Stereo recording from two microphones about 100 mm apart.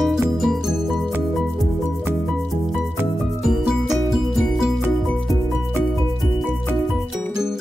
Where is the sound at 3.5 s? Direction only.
5° right (ahead or behind).